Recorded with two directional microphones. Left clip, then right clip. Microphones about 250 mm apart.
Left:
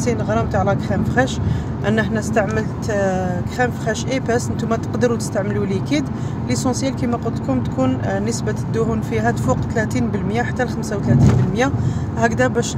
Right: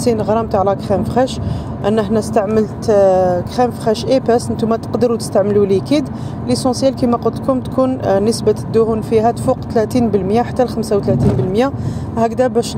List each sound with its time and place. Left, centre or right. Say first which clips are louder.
0.0 s speech: right 5 dB; centre